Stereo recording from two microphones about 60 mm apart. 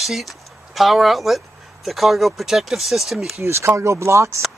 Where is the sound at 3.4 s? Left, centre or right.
Right.